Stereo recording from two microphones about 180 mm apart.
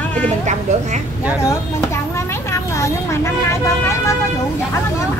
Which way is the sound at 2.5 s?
15° left (ahead or behind).